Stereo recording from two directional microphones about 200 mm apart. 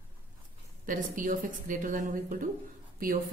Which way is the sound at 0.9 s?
45° right (ahead or behind).